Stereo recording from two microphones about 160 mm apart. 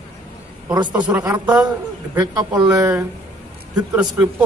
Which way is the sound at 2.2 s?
20° right (ahead or behind).